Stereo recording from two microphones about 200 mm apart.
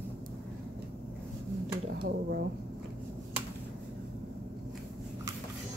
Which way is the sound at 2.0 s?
50° right (ahead or behind).